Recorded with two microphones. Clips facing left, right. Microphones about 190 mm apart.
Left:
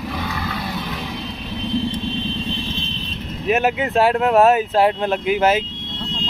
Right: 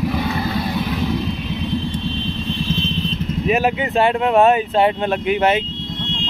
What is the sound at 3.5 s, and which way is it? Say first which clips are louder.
Speech: even; centre (ahead or behind).